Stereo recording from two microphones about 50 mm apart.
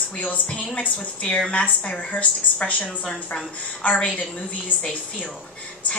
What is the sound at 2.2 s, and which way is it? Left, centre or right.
Speech, left.